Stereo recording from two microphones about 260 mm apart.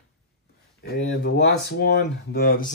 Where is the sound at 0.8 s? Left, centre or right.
Left.